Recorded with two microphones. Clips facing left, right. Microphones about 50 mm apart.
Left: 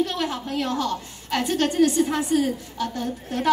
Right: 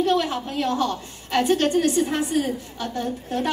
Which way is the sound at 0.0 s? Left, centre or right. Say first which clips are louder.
Right 4 dB; right.